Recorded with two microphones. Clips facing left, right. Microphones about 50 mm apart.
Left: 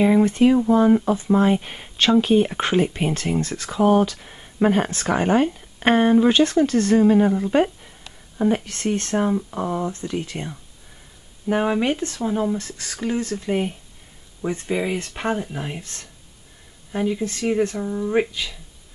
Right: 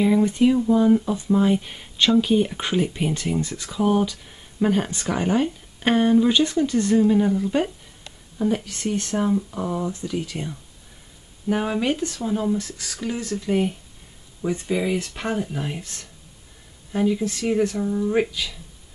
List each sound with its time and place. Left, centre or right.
0.4 s speech: left
3.3 s speech: left
3.7 s speech: centre
6.4 s speech: left
7.0 s speech: left
8.6 s speech: left
9.1 s speech: centre
12.7 s speech: left
13.3 s speech: centre
15.8 s speech: left
16.9 s speech: centre